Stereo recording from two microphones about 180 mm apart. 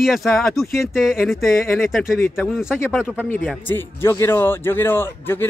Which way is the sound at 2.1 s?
15° left (ahead or behind).